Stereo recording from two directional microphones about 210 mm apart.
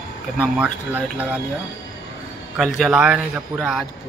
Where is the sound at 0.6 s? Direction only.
5° right (ahead or behind).